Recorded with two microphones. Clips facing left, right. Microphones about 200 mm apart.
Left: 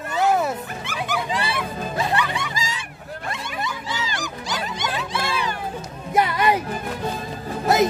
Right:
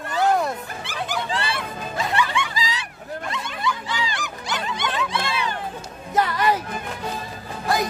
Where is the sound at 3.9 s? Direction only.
40° left (ahead or behind).